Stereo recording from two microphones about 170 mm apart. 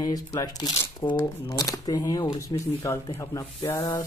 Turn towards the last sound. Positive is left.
turn(degrees=20)  # may be behind; listen again after turning